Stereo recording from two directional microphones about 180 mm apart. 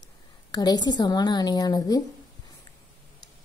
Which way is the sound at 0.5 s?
20° left (ahead or behind).